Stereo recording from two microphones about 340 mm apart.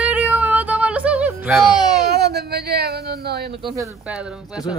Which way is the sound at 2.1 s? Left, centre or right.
Right.